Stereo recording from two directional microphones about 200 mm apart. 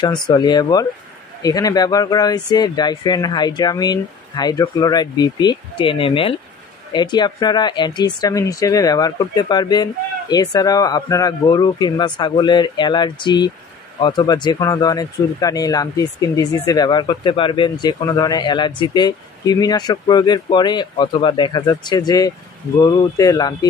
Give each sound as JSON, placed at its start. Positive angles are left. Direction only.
{"t": 0.0, "sound": "speech", "side_deg": 20}